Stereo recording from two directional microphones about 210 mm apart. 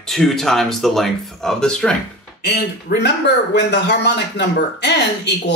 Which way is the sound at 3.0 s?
55° left (ahead or behind).